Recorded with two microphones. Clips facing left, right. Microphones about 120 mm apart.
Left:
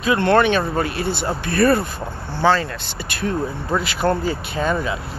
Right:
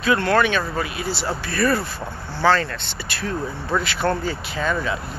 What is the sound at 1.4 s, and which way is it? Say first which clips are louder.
Speech: left 6 dB; 50° left (ahead or behind).